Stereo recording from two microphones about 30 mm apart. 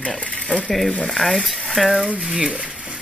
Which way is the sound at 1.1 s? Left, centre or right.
Centre.